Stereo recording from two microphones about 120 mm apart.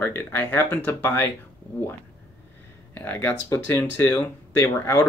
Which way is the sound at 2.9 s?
15° left (ahead or behind).